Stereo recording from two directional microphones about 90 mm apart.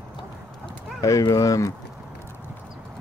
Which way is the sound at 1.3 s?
35° left (ahead or behind).